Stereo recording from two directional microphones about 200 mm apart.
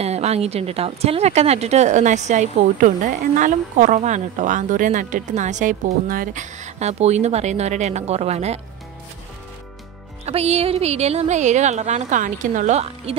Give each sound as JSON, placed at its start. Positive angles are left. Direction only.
{"t": 0.0, "sound": "speech", "side_deg": -30}
{"t": 10.2, "sound": "speech", "side_deg": -30}